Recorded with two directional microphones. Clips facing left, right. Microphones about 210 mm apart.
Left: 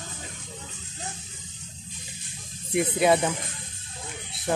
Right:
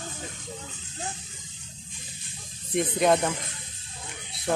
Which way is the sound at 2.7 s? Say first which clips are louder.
Left 1 dB; 5° left (ahead or behind).